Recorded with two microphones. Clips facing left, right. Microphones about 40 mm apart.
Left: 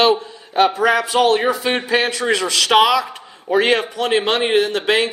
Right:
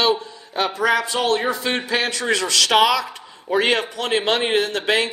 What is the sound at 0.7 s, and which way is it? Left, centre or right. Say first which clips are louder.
A man's voice: left 4 dB; centre.